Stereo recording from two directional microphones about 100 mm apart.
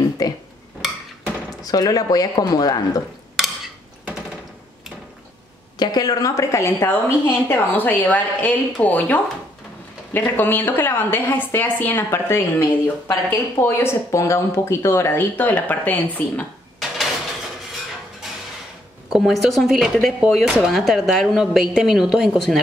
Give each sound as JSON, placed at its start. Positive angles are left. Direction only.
{"t": 0.2, "sound": "speech", "side_deg": 40}
{"t": 1.6, "sound": "speech", "side_deg": 40}
{"t": 3.4, "sound": "a sound", "side_deg": -5}
{"t": 5.8, "sound": "a woman's voice", "side_deg": 40}
{"t": 19.1, "sound": "speech", "side_deg": 0}